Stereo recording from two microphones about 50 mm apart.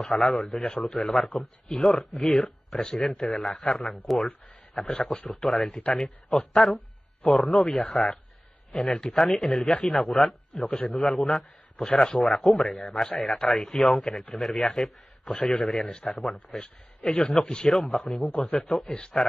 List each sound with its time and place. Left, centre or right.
0.0 s a man's voice: centre
11.8 s a man's voice: centre
12.2 s speech: centre
16.5 s a man's voice: left